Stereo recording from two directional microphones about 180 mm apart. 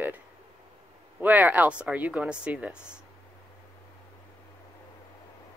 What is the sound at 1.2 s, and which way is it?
Speech, 10° right (ahead or behind).